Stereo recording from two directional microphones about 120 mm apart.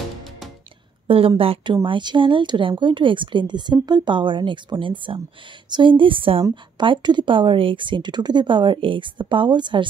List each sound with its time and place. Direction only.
1.0 s a woman's voice: 50° right (ahead or behind)